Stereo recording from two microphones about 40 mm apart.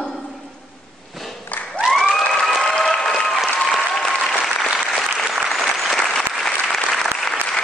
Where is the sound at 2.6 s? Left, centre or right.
Centre.